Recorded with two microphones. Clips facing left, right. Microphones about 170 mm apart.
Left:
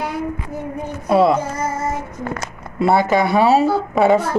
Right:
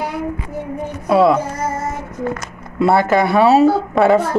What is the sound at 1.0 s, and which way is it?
Speech, centre (ahead or behind).